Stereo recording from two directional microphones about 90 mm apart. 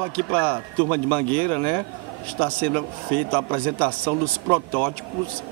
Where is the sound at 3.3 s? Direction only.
15° left (ahead or behind).